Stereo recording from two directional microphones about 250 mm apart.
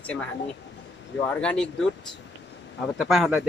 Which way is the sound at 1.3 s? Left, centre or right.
Centre.